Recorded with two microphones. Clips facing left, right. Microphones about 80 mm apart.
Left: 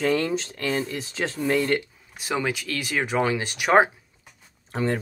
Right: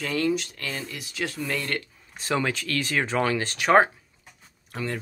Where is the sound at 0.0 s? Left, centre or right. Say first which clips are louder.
Left 2 dB; left.